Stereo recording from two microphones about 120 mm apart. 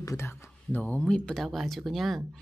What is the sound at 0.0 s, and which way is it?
A woman's voice, 25° left (ahead or behind).